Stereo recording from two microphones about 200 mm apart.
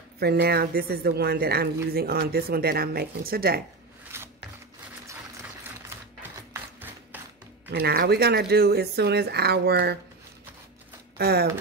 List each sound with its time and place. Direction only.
0.2 s speech: 50° right (ahead or behind)
4.1 s scissors: 10° right (ahead or behind)
6.5 s a sound: 10° right (ahead or behind)
7.7 s speech: 50° right (ahead or behind)
11.1 s speech: 50° right (ahead or behind)